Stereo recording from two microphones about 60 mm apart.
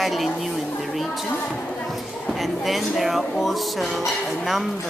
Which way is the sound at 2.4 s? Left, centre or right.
Centre.